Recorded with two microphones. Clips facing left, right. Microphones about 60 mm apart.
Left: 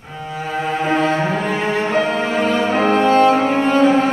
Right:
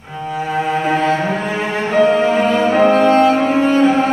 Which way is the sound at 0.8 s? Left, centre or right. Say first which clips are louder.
Even; centre.